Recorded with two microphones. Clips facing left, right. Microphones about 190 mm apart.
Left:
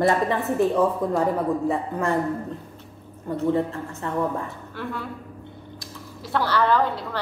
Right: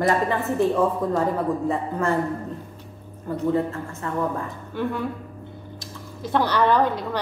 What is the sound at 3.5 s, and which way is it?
Speech, 25° left (ahead or behind).